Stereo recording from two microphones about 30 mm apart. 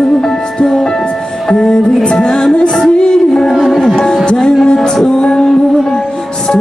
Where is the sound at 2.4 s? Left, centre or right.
Centre.